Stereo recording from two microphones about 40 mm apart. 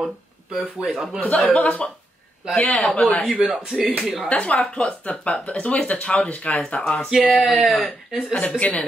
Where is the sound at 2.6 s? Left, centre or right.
Left.